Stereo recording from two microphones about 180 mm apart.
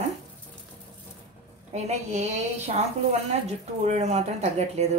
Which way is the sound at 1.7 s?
40° right (ahead or behind).